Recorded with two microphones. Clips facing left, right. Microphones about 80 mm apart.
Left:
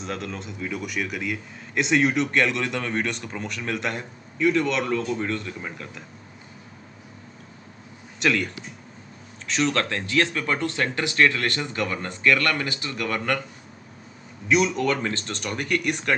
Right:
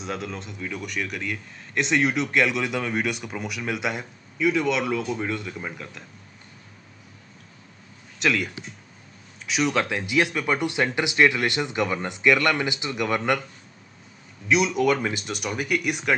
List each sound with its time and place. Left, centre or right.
0.0 s a man's voice: centre
8.2 s a man's voice: centre
14.5 s a man's voice: centre